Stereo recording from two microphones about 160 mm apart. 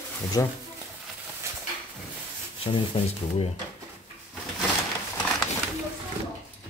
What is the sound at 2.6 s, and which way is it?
Speech, 35° left (ahead or behind).